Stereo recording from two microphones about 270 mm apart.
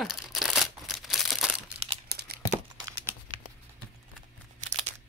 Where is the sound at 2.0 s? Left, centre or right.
Right.